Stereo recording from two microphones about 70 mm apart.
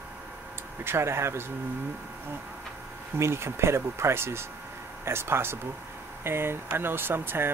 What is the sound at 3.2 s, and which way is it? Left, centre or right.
Speech, right.